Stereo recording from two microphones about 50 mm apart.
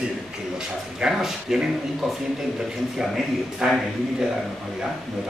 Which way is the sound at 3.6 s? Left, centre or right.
Centre.